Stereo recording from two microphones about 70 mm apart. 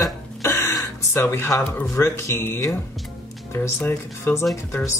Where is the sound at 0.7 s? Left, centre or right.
Left.